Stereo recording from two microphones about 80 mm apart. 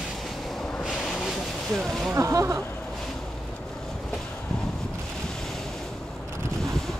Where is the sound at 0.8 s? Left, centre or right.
Centre.